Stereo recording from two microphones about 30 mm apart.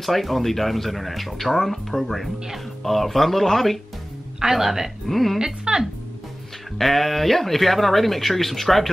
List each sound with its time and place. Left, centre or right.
0.0 s speech: centre
4.4 s speech: centre
5.0 s speech: centre
5.4 s speech: right
6.8 s speech: centre